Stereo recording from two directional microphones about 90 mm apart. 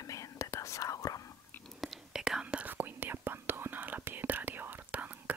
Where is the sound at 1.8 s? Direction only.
5° right (ahead or behind).